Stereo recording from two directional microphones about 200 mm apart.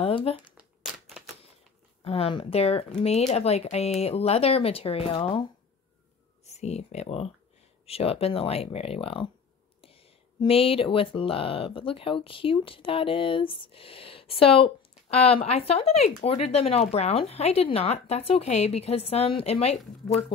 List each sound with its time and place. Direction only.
0.0 s speech: 30° left (ahead or behind)
0.6 s crumpling: 5° right (ahead or behind)
2.0 s speech: 30° left (ahead or behind)